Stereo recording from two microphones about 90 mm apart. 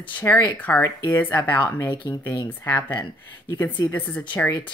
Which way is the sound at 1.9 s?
50° left (ahead or behind).